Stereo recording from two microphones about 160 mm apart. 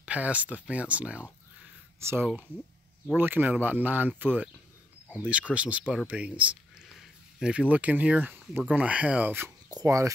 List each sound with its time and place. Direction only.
0.0 s speech: 10° right (ahead or behind)